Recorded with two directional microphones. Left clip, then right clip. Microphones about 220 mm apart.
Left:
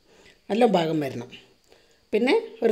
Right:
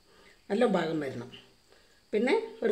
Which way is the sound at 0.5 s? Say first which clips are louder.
Left 6 dB; 30° left (ahead or behind).